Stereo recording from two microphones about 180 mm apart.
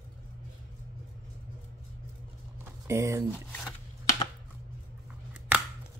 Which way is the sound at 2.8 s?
15° right (ahead or behind).